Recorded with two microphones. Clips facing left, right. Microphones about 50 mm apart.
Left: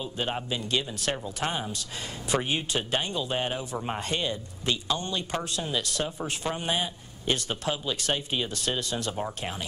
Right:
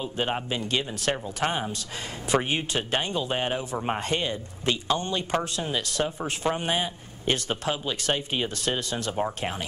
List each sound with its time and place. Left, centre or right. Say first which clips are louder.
0.0 s speech: right 3 dB; right